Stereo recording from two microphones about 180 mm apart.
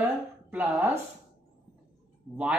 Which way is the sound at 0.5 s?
10° right (ahead or behind).